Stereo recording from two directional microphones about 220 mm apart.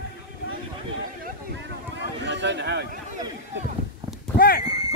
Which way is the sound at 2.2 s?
55° right (ahead or behind).